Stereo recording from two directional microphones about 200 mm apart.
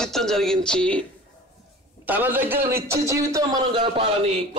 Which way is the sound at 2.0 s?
10° right (ahead or behind).